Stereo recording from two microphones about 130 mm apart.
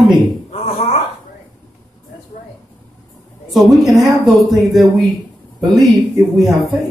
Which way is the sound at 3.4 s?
Centre (ahead or behind).